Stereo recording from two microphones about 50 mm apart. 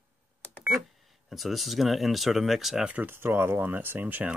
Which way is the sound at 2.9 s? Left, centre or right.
Right.